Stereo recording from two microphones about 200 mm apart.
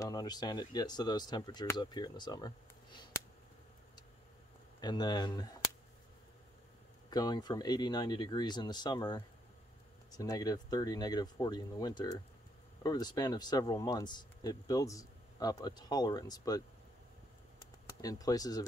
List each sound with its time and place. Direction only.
0.0 s speech: 20° left (ahead or behind)
4.7 s speech: 20° left (ahead or behind)
7.1 s speech: 20° left (ahead or behind)
18.0 s speech: 20° left (ahead or behind)